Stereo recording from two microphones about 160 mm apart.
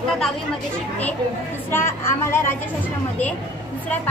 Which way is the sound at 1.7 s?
15° left (ahead or behind).